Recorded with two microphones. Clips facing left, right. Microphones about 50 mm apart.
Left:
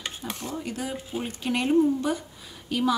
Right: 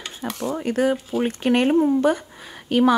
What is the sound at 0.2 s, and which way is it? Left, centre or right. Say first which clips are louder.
Speech: right 10 dB; right.